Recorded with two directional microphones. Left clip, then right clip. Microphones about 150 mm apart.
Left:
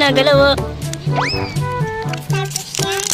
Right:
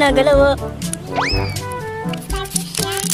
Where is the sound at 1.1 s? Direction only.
Centre (ahead or behind).